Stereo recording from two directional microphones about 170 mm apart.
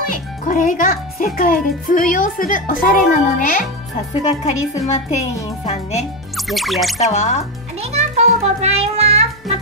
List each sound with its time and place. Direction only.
0.1 s a child's voice: 50° left (ahead or behind)
4.1 s a woman's voice: 40° left (ahead or behind)
6.3 s music: centre (ahead or behind)
7.0 s a woman's voice: 40° left (ahead or behind)
7.8 s music: 40° right (ahead or behind)